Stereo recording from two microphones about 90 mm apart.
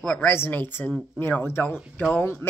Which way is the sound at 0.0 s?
15° left (ahead or behind).